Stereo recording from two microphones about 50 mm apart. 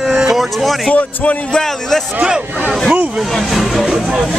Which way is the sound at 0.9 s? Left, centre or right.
Left.